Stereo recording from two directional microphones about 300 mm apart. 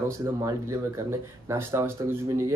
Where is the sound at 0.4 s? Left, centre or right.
Centre.